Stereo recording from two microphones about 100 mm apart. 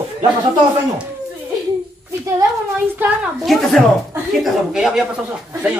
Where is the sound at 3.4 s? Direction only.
Centre (ahead or behind).